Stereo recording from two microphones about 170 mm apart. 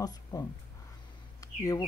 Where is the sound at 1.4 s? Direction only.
20° left (ahead or behind).